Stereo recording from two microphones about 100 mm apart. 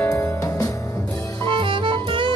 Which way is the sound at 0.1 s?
35° left (ahead or behind).